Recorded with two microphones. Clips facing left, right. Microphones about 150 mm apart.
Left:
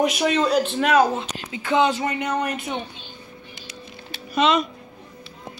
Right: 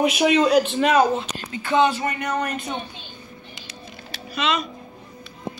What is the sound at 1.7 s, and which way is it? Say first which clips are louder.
Speech: even; 20° left (ahead or behind).